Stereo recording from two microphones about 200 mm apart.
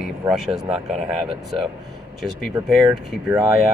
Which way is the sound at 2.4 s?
Centre (ahead or behind).